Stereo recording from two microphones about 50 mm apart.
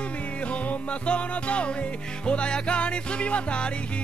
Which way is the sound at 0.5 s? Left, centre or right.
Left.